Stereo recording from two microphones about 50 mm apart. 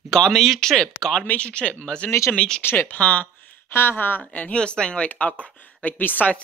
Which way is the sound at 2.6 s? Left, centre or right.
Left.